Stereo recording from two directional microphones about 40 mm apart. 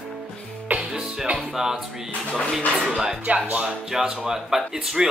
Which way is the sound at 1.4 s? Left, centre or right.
Centre.